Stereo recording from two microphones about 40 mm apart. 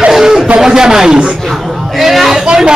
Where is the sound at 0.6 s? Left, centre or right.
Centre.